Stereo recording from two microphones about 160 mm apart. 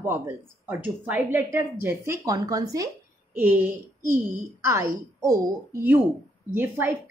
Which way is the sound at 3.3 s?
10° right (ahead or behind).